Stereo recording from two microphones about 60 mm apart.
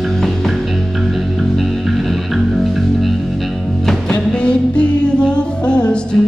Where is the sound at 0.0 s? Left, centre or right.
Centre.